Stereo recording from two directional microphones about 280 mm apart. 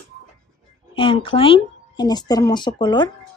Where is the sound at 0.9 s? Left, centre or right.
Centre.